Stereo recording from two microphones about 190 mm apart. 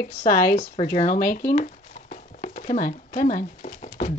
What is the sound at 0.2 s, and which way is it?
Speech, 50° left (ahead or behind).